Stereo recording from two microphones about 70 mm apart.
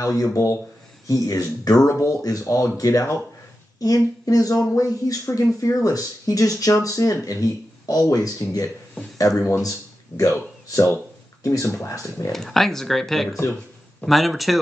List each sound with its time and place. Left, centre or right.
0.0 s speech: left
12.3 s speech: centre